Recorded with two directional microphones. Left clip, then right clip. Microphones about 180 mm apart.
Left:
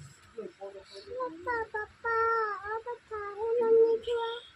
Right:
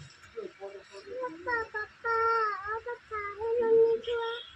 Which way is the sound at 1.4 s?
30° left (ahead or behind).